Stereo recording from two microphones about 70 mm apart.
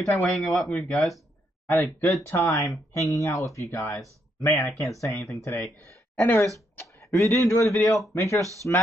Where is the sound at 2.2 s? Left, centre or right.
Left.